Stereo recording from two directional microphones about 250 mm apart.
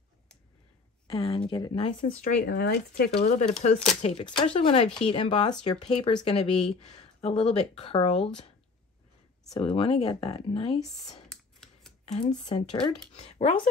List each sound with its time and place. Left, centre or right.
1.0 s speech: left
3.1 s speech: left
9.5 s speech: left
11.2 s computer keyboard: centre
12.1 s speech: left